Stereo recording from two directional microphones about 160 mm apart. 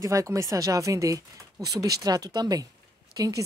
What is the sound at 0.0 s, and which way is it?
Speech, 20° right (ahead or behind).